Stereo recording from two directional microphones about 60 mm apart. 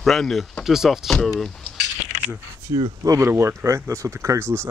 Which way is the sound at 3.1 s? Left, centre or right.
Right.